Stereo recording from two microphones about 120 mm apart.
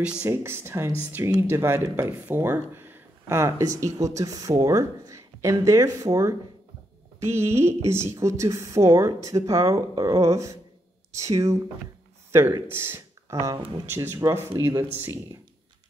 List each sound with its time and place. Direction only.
0.0 s speech: 10° right (ahead or behind)
0.3 s speech: 20° right (ahead or behind)